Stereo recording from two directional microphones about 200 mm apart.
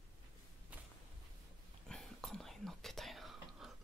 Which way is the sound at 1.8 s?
Centre (ahead or behind).